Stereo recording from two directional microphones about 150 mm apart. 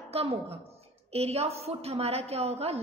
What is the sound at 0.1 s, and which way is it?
A woman's voice, 40° right (ahead or behind).